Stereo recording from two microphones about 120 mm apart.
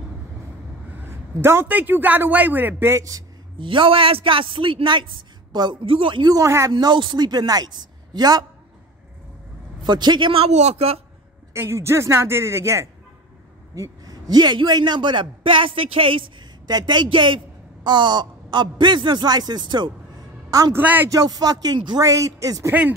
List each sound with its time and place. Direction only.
0.9 s a man's voice: 20° right (ahead or behind)
3.5 s a man's voice: 45° right (ahead or behind); by 6.7 s 25° right (ahead or behind)
6.7 s a man's voice: 40° right (ahead or behind)
9.8 s a man's voice: 40° right (ahead or behind); by 11.0 s 60° right (ahead or behind)
11.5 s a man's voice: 20° right (ahead or behind); by 16.4 s 45° right (ahead or behind)
16.6 s a man's voice: 35° right (ahead or behind)
20.7 s a man's voice: 15° right (ahead or behind)
21.1 s a man's voice: 30° right (ahead or behind)
22.0 s speech: 25° right (ahead or behind)
22.7 s a man's voice: 15° right (ahead or behind)